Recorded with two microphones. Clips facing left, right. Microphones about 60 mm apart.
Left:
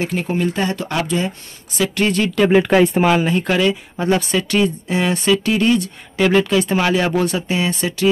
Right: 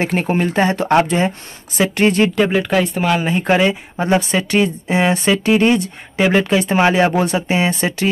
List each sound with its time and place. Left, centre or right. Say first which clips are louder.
0.0 s speech: right 2 dB; right
2.5 s speech: left 4 dB; centre
3.3 s speech: right 2 dB; right